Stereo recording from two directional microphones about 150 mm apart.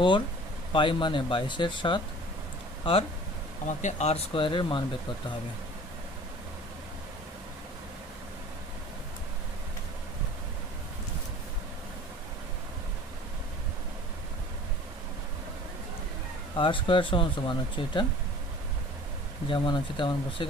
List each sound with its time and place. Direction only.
0.7 s speech: 35° left (ahead or behind)
3.6 s speech: 50° left (ahead or behind)
4.4 s speech: 35° left (ahead or behind)
16.5 s speech: 35° left (ahead or behind)
19.5 s speech: 35° left (ahead or behind)